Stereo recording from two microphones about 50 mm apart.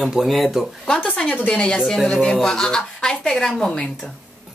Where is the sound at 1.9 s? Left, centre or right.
Centre.